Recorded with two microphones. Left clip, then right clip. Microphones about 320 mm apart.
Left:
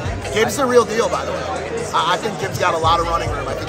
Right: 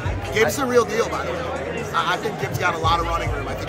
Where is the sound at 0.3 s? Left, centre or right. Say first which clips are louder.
Left 3 dB; centre.